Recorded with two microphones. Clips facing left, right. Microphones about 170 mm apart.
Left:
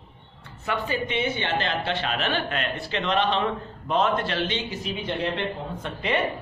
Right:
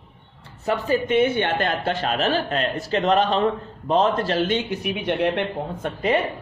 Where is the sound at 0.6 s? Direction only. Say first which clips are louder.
Right 6 dB; 40° right (ahead or behind); by 5.5 s 65° right (ahead or behind).